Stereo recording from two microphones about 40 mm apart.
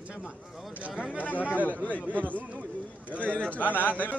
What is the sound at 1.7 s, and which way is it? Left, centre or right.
Speech, right.